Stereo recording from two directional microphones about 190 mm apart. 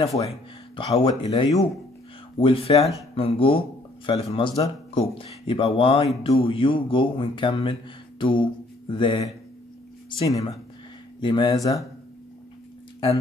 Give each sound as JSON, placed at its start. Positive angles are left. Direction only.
{"t": 0.2, "sound": "speech", "side_deg": 30}
{"t": 8.2, "sound": "mantra", "side_deg": 25}
{"t": 10.0, "sound": "speech", "side_deg": 25}